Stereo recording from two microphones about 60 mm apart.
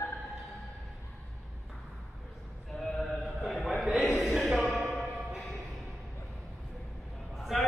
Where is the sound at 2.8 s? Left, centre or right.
Centre.